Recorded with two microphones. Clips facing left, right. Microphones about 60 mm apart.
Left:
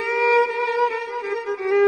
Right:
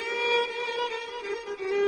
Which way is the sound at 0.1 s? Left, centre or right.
Left.